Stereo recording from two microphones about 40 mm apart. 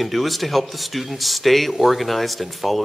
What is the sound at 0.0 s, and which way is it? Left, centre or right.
Speech, centre.